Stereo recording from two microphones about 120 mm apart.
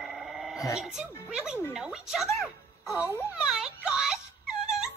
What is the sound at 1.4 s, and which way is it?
Speech, 5° right (ahead or behind).